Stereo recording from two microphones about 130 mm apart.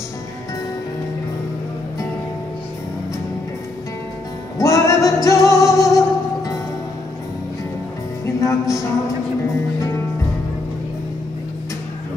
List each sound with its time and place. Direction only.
4.6 s music: 25° left (ahead or behind)
8.4 s music: 25° left (ahead or behind)